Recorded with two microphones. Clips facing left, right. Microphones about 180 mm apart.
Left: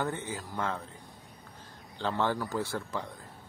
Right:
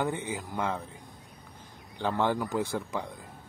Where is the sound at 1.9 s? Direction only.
15° right (ahead or behind).